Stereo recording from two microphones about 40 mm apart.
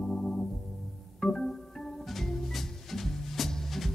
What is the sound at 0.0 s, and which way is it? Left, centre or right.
Organ, centre.